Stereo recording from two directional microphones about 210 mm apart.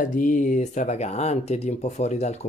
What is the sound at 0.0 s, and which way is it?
Speech, 40° left (ahead or behind).